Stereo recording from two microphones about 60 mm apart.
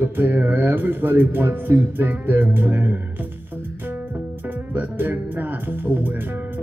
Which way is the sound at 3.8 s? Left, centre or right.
Right.